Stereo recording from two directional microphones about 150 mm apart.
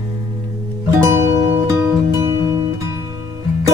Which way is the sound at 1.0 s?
20° right (ahead or behind).